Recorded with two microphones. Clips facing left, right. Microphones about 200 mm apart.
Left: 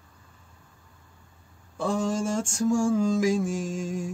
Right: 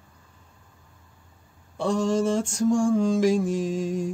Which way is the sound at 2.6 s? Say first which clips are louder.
Right 2 dB; 5° left (ahead or behind).